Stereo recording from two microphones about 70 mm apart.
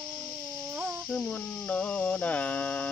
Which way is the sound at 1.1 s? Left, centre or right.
Centre.